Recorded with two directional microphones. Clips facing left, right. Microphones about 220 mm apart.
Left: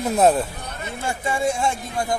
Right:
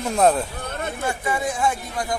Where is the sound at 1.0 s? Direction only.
25° left (ahead or behind).